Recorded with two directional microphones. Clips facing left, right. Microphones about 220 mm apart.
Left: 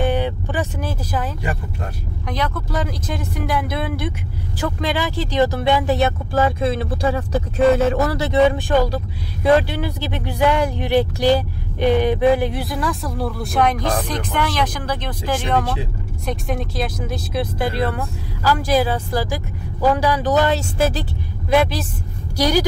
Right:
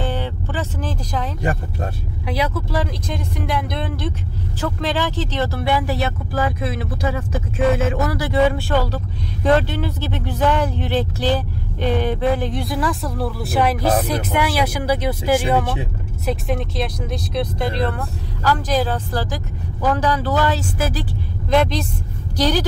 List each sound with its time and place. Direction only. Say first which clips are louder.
0.0 s a sound: left 5 dB; 15° left (ahead or behind)
2.2 s speech: right 2 dB; 5° right (ahead or behind); by 7.9 s 40° left (ahead or behind)
8.1 s speech: left 2 dB; 20° left (ahead or behind)
21.5 s speech: even; 5° left (ahead or behind)